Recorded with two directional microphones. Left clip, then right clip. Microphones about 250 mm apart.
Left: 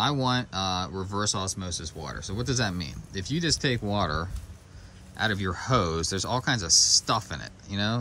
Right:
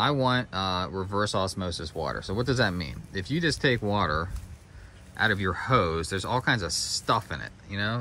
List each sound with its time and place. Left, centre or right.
0.0 s speech: centre